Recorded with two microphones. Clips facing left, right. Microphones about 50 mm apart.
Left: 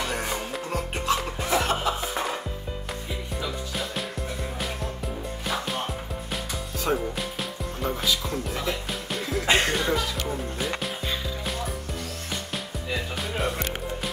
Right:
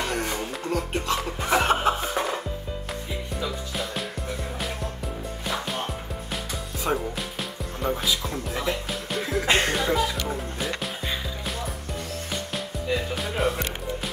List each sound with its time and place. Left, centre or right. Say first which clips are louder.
0.1 s music: right 1 dB; centre
1.5 s music: right 4 dB; right
2.0 s music: right 2 dB; centre
5.5 s music: even; centre
13.1 s speech: right 3 dB; centre